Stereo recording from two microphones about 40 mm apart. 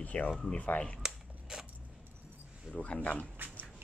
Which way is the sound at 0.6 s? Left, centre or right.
Left.